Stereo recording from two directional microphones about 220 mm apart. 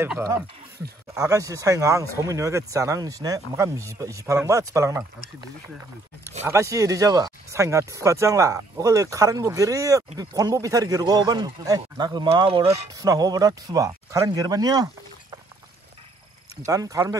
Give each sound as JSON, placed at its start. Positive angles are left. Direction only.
{"t": 0.0, "sound": "speech", "side_deg": -10}
{"t": 6.4, "sound": "speech", "side_deg": -15}
{"t": 13.0, "sound": "speech", "side_deg": -15}
{"t": 16.6, "sound": "speech", "side_deg": -15}